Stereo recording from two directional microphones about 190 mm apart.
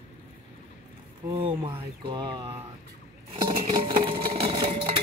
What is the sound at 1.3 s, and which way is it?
Speech, 30° right (ahead or behind).